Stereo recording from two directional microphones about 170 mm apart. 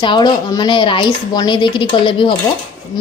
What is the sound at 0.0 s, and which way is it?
A woman's voice, 25° left (ahead or behind).